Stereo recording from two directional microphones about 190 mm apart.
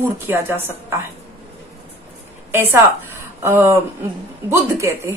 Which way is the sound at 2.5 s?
10° right (ahead or behind).